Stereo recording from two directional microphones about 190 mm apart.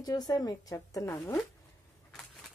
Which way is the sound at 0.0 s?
20° left (ahead or behind).